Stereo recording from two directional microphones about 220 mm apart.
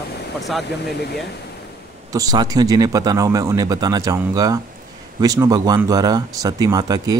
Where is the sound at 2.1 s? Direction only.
15° right (ahead or behind).